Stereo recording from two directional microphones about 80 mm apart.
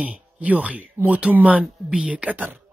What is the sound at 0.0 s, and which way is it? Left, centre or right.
Speech, centre.